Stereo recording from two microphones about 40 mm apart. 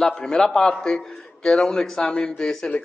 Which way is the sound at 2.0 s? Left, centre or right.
Left.